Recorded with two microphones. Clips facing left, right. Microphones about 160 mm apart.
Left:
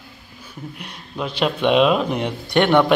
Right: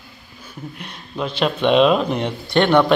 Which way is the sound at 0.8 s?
5° left (ahead or behind).